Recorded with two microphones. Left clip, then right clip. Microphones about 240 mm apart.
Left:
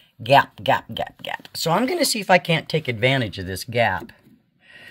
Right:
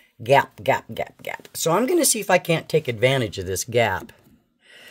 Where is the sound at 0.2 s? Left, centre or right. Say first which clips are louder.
Left 2 dB; right.